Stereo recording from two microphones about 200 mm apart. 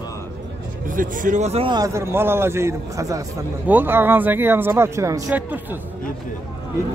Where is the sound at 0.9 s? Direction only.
40° right (ahead or behind); by 5.8 s 10° right (ahead or behind).